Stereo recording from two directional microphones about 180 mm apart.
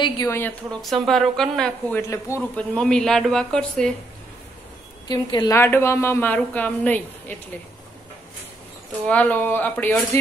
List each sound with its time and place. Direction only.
0.0 s a woman's voice: 15° left (ahead or behind)
0.8 s speech: centre (ahead or behind)
2.0 s a woman's voice: 15° left (ahead or behind)
2.7 s speech: 5° left (ahead or behind)
5.0 s a woman's voice: 25° left (ahead or behind)
9.0 s a woman's voice: 10° left (ahead or behind)